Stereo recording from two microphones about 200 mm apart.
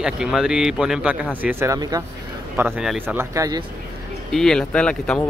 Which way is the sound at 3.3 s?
20° right (ahead or behind).